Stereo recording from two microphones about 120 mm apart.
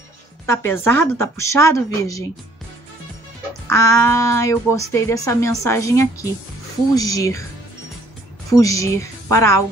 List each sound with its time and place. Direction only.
0.5 s speech: 20° left (ahead or behind)
3.6 s speech: 25° left (ahead or behind)
8.5 s a woman's voice: 30° left (ahead or behind)